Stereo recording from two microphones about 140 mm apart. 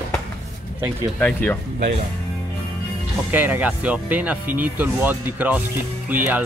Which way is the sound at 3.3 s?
15° right (ahead or behind).